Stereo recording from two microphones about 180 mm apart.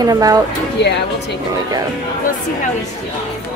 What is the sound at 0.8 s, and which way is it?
Speech, 75° left (ahead or behind).